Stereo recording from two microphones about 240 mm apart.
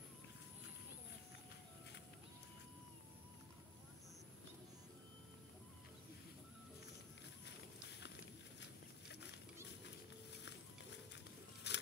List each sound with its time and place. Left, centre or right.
11.7 s scissors: left